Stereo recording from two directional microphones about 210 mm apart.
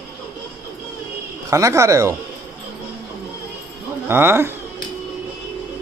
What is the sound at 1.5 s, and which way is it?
Speech, 15° right (ahead or behind).